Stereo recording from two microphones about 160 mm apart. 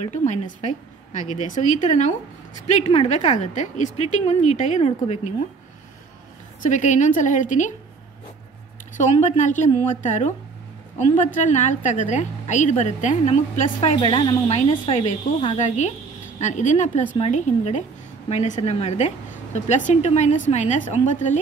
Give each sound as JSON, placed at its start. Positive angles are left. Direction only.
{"t": 0.1, "sound": "a woman's voice", "side_deg": 45}
{"t": 6.6, "sound": "a woman's voice", "side_deg": 50}
{"t": 8.9, "sound": "a woman's voice", "side_deg": 50}
{"t": 11.4, "sound": "a woman's voice", "side_deg": 50}
{"t": 13.9, "sound": "a woman's voice", "side_deg": 30}